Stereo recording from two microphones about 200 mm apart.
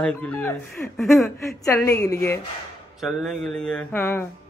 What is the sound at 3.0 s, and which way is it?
Speech, centre (ahead or behind).